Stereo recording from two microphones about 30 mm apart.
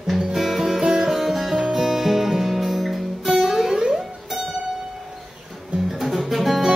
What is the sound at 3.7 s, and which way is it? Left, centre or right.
Music, right.